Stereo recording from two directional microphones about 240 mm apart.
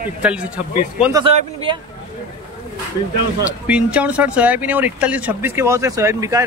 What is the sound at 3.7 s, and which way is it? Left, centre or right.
Speech, centre.